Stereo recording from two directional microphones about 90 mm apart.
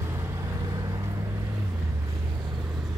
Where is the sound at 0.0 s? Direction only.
30° right (ahead or behind).